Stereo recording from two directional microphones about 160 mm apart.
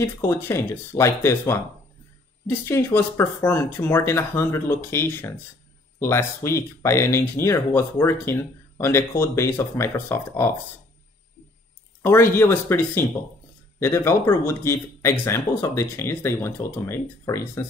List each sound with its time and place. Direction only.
0.0 s speech: 15° left (ahead or behind)
12.0 s speech: 15° left (ahead or behind)